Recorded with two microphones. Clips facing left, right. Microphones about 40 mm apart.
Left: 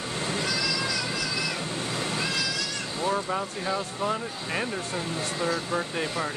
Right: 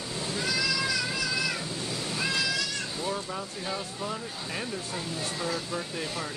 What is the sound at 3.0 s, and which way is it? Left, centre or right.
Speech, left.